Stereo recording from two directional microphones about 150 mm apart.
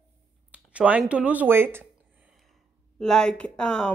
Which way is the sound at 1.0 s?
10° right (ahead or behind).